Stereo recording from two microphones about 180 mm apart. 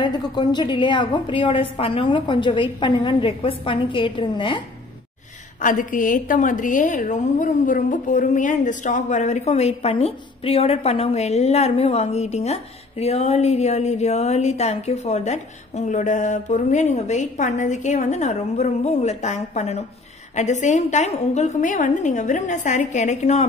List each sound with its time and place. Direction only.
0.0 s a woman's voice: 25° left (ahead or behind)
5.6 s a woman's voice: 45° left (ahead or behind)